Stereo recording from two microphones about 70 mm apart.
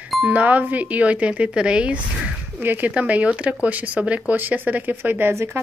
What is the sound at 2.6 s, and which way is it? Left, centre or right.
Speech, right.